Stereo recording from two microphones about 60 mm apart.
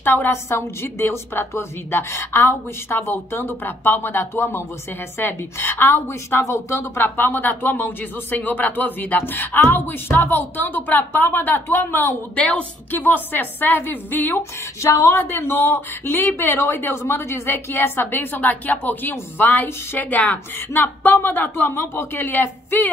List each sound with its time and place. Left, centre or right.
0.0 s a woman's voice: left
7.0 s a woman's voice: left
12.4 s a woman's voice: left
14.8 s a woman's voice: left